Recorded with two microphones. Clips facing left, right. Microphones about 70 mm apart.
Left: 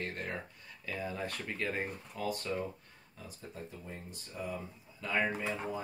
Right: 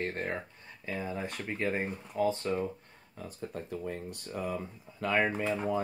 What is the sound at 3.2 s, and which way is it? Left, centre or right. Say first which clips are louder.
Speech: right 6 dB; right.